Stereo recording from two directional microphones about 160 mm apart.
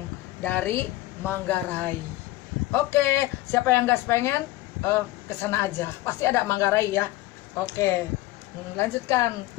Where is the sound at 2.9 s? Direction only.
15° left (ahead or behind).